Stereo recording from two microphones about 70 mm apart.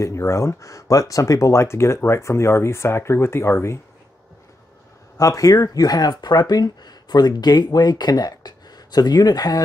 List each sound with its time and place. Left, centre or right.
0.0 s speech: left
5.1 s speech: left